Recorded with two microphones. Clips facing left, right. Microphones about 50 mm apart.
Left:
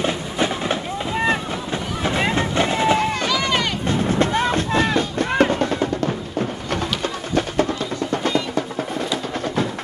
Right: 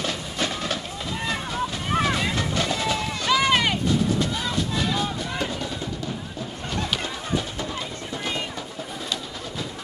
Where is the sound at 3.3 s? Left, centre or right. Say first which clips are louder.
Even; centre.